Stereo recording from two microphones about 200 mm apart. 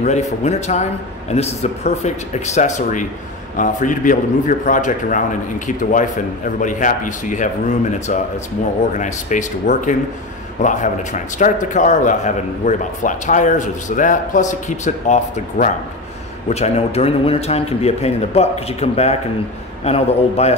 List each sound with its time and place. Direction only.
0.0 s a man's voice: 35° left (ahead or behind)
8.9 s a man's voice: 35° left (ahead or behind)